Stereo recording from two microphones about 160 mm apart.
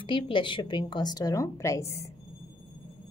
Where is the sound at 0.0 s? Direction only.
30° left (ahead or behind).